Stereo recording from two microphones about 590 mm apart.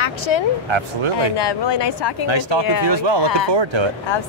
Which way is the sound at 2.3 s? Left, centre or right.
Right.